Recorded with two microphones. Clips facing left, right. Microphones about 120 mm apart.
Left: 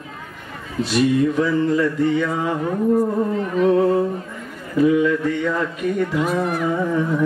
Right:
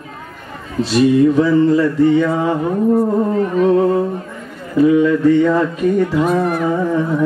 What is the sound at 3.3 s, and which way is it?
Speech, 45° right (ahead or behind).